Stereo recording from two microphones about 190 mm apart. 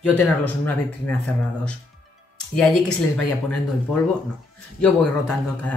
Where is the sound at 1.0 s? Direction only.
5° left (ahead or behind).